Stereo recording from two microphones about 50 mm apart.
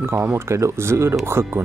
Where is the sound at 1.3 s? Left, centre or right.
Right.